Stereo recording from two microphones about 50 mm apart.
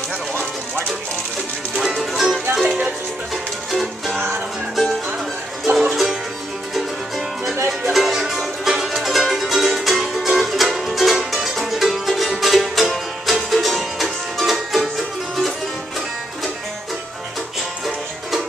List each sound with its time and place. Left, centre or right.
1.8 s music: centre
3.7 s music: centre
5.7 s music: right
7.9 s music: centre